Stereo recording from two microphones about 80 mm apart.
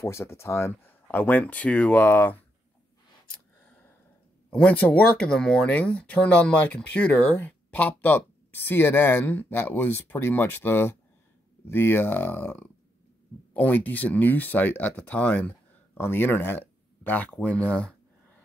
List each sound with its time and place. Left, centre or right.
0.0 s speech: left
0.8 s speech: left
4.5 s speech: centre